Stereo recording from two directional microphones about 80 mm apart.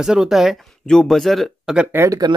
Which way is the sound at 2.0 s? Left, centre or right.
Right.